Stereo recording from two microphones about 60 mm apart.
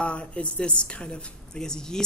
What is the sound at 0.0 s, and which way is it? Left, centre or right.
A woman's voice, centre.